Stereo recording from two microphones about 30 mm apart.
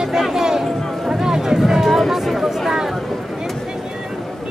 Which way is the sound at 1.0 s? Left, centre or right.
Centre.